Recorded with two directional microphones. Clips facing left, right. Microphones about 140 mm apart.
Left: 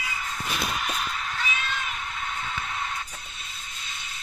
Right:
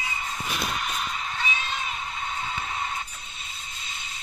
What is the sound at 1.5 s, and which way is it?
Cat, 30° right (ahead or behind).